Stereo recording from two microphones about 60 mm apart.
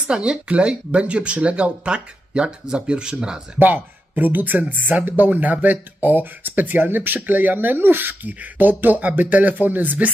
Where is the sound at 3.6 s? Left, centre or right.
Right.